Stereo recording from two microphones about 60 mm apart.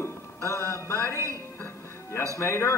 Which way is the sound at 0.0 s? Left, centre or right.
Left.